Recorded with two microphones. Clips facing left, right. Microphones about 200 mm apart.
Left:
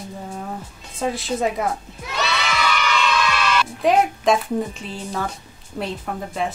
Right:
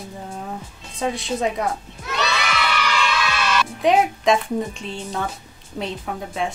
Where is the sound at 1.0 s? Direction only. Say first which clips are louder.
Left 1 dB; centre (ahead or behind).